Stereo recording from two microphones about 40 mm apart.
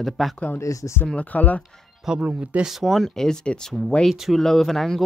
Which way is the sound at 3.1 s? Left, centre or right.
Centre.